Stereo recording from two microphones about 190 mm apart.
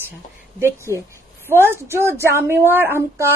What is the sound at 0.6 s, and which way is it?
A woman's voice, 15° right (ahead or behind).